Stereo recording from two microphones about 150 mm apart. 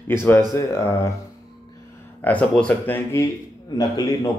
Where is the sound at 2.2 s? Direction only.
10° left (ahead or behind).